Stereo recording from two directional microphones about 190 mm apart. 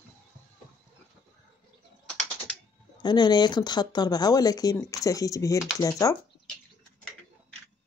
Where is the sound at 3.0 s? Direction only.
20° left (ahead or behind).